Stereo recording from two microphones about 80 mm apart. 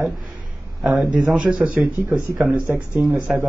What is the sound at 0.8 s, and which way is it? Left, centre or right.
A man's voice, centre.